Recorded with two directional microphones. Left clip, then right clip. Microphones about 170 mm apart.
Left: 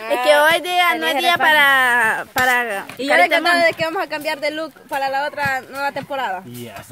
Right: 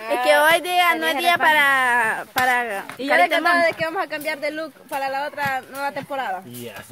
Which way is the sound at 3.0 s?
45° left (ahead or behind).